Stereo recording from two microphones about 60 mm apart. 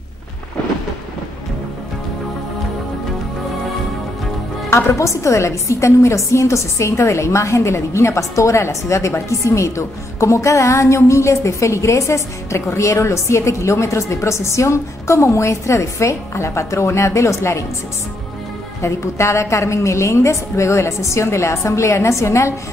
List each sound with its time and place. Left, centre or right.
4.6 s a woman's voice: left
18.8 s a woman's voice: left